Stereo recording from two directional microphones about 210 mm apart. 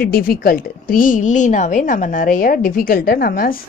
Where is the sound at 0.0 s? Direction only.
45° left (ahead or behind).